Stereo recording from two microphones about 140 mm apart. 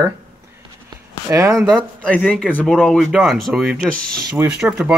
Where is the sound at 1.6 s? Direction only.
5° left (ahead or behind).